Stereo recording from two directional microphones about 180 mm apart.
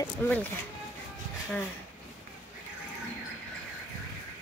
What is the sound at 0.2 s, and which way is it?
Speech, 10° left (ahead or behind).